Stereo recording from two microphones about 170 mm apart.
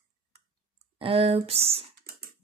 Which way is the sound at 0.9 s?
35° right (ahead or behind).